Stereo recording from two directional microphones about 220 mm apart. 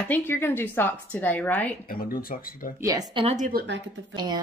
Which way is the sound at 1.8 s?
40° left (ahead or behind).